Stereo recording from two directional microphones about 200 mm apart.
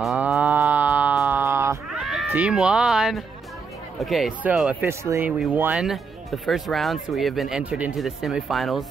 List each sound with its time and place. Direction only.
0.0 s moo: 5° right (ahead or behind)
4.0 s speech: centre (ahead or behind)